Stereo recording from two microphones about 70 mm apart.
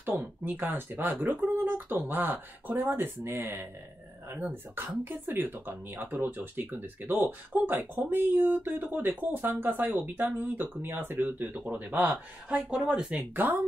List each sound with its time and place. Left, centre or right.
0.0 s speech: right
12.6 s speech: centre
13.3 s speech: right